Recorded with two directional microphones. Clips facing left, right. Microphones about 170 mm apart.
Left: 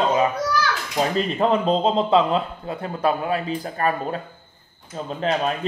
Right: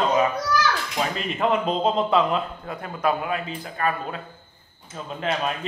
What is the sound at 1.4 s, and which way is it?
A man's voice, 30° left (ahead or behind).